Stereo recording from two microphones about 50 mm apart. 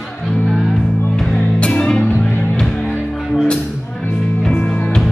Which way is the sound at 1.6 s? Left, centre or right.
Centre.